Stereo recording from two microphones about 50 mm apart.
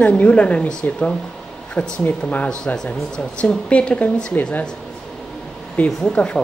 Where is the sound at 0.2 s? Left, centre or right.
Left.